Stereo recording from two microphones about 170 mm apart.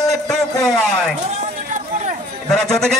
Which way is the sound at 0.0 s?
Centre (ahead or behind).